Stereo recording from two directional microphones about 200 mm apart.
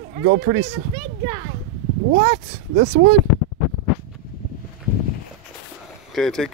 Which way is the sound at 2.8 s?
45° right (ahead or behind).